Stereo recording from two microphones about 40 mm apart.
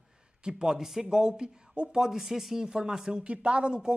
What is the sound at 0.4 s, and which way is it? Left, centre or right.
A woman's voice, centre.